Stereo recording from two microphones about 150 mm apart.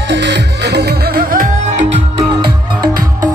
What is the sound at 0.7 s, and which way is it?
Music, 90° right.